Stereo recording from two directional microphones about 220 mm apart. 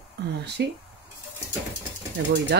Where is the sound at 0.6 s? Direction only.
50° right (ahead or behind).